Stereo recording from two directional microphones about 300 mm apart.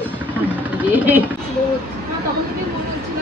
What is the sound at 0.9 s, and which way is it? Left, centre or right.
Speech, centre.